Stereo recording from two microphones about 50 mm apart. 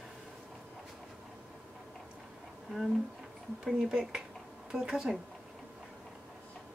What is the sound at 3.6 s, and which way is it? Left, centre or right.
Speech, centre.